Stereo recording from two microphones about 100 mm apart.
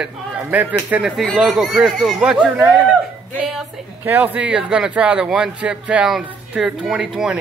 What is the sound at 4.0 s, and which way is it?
Speech, 15° right (ahead or behind).